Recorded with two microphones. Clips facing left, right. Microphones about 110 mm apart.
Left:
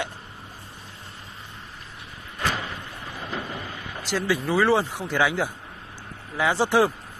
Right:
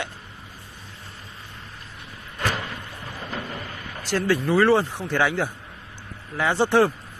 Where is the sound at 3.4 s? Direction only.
20° left (ahead or behind).